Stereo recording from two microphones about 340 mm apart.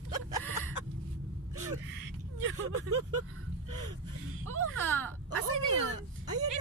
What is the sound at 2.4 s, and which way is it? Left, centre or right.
Speech, right.